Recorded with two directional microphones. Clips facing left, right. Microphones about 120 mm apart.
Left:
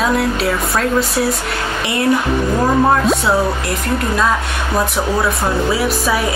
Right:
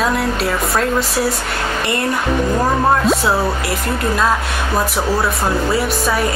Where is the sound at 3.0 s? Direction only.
Centre (ahead or behind).